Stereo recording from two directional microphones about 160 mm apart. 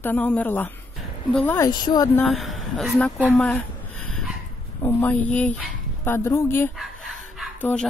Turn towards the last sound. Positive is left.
turn(degrees=10)  # may be behind; listen again after turning